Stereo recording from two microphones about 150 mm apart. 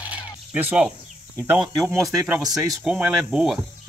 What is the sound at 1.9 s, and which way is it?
Speech, 20° right (ahead or behind).